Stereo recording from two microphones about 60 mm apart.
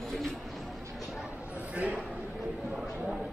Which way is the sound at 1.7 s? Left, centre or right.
Right.